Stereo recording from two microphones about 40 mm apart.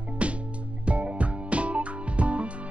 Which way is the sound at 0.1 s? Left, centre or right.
Right.